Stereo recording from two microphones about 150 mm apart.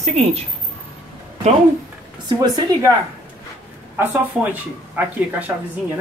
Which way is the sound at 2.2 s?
25° right (ahead or behind).